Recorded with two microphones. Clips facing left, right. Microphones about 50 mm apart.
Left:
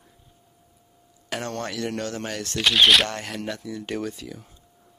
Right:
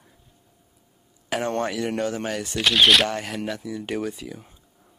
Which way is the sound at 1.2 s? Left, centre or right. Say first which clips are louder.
Right 5 dB; centre.